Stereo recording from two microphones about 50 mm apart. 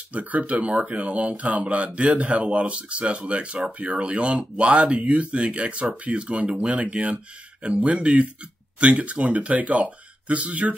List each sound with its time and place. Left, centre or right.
0.1 s speech: right